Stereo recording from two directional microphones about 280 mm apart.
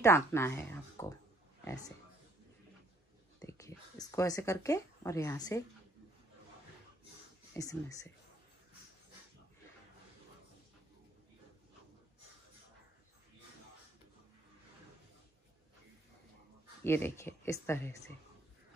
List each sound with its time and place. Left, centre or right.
0.0 s speech: centre
3.3 s speech: centre
7.5 s speech: centre
16.8 s speech: centre